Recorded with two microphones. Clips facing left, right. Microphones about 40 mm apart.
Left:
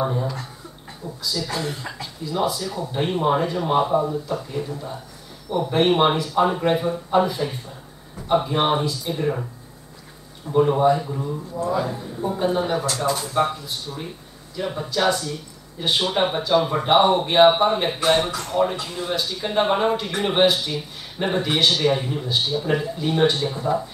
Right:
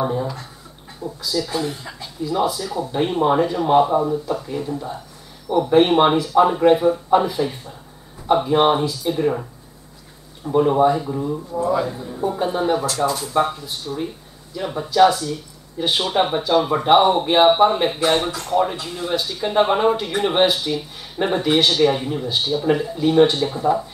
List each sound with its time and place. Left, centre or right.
0.0 s speech: centre
4.6 s speech: centre
10.5 s speech: centre